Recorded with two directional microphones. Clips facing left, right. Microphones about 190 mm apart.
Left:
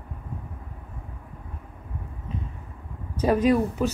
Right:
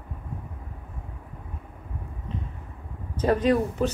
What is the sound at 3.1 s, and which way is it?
Speech, 10° left (ahead or behind).